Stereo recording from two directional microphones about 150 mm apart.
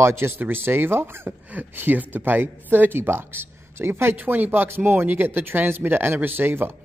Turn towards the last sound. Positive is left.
turn(degrees=-15)  # may be behind; listen again after turning